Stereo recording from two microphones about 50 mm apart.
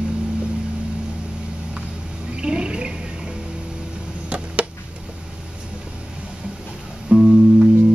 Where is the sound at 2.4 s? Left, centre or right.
Right.